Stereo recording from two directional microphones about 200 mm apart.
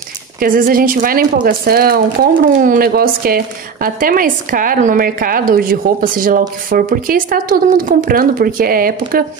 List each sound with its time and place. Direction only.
0.4 s speech: 45° right (ahead or behind)